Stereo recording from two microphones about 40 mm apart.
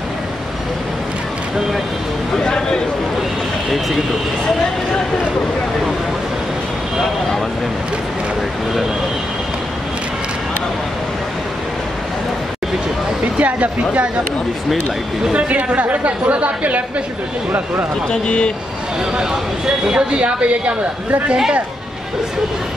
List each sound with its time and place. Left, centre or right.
2.3 s a sound: centre
13.2 s speech: right
15.3 s a woman's voice: right
18.1 s speech: left
19.1 s speech: centre